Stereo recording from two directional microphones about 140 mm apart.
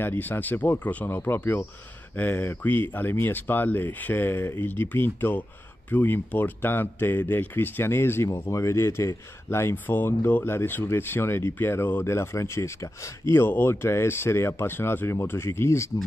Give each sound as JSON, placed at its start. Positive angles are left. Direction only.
{"t": 0.0, "sound": "speech", "side_deg": 15}